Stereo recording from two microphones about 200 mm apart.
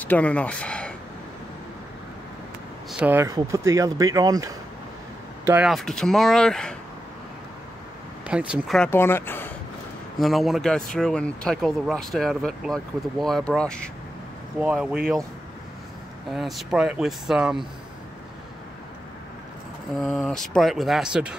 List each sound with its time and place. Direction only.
0.0 s speech: 5° left (ahead or behind)
2.9 s speech: 10° right (ahead or behind)
5.7 s speech: centre (ahead or behind)
8.3 s speech: 5° right (ahead or behind); by 9.5 s 10° left (ahead or behind)
10.1 s speech: centre (ahead or behind)
14.6 s speech: 5° right (ahead or behind)
16.3 s speech: centre (ahead or behind)
20.0 s speech: centre (ahead or behind)